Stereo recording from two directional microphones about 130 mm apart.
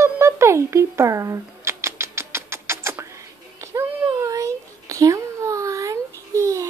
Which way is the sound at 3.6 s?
20° right (ahead or behind).